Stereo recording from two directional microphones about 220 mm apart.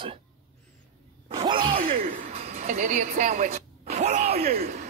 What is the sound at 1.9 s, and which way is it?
Chuckle, 40° right (ahead or behind).